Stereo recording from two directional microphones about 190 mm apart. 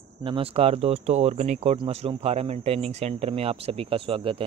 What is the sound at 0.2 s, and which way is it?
Speech, 30° right (ahead or behind).